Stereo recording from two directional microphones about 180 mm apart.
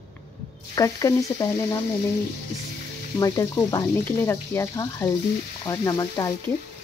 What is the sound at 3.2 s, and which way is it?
Speech, 20° left (ahead or behind).